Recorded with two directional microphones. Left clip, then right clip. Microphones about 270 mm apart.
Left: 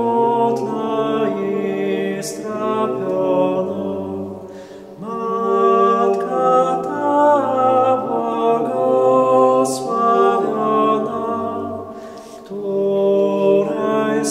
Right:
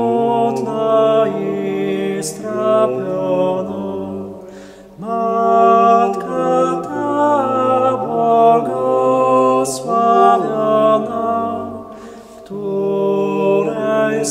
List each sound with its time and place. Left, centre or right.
0.2 s music: centre
5.1 s music: centre
12.9 s mantra: centre